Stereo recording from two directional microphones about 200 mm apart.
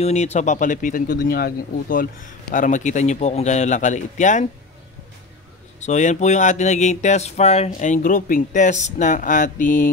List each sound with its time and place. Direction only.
0.0 s speech: 35° left (ahead or behind)
5.8 s speech: 35° left (ahead or behind)